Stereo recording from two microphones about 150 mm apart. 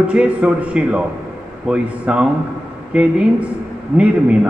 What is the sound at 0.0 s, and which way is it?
Speech, 10° right (ahead or behind).